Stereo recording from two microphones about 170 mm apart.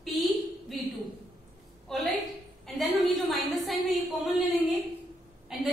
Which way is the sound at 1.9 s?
Centre (ahead or behind).